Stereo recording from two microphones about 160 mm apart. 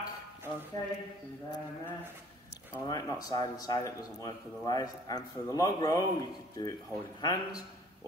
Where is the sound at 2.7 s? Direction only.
20° left (ahead or behind).